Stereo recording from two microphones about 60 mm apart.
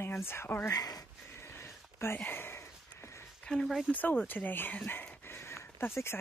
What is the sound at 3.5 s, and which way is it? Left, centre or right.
Speech, centre.